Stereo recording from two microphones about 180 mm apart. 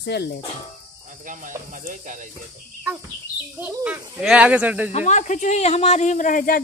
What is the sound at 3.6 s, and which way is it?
Speech, 10° right (ahead or behind).